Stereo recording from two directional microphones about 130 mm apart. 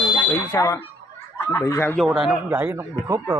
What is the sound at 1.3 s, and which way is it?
Speech, 20° left (ahead or behind).